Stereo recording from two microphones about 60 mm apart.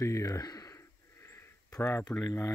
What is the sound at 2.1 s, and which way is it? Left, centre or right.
Speech, left.